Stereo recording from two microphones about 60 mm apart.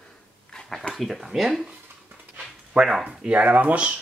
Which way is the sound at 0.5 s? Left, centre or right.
Centre.